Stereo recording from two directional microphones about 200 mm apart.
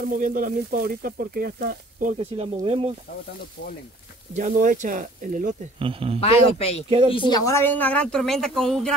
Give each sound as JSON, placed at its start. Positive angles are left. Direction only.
{"t": 0.1, "sound": "speech", "side_deg": -45}
{"t": 2.1, "sound": "speech", "side_deg": -30}
{"t": 4.4, "sound": "speech", "side_deg": -40}
{"t": 5.8, "sound": "speech", "side_deg": -25}
{"t": 6.2, "sound": "a woman's voice", "side_deg": 30}